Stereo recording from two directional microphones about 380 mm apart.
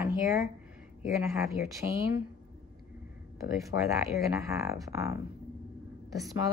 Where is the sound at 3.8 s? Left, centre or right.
Centre.